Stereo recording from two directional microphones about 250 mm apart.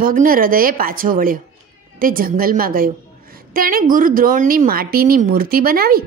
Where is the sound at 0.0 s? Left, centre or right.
Right.